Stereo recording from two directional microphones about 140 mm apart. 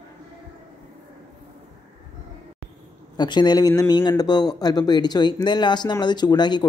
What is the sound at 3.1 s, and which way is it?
Speech, 30° left (ahead or behind).